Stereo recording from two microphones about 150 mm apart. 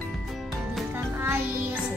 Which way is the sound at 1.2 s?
15° right (ahead or behind).